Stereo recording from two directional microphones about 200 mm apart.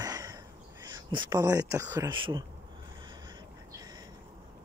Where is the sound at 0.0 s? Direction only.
20° right (ahead or behind).